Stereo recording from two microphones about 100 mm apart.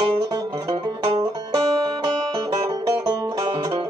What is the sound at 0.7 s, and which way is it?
Music, 50° right (ahead or behind).